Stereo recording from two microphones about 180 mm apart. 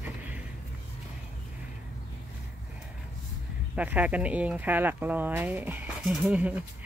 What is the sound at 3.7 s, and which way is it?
Speech, 10° right (ahead or behind).